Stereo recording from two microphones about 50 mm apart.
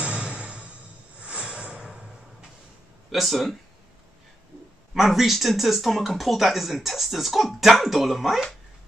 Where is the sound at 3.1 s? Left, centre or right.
Centre.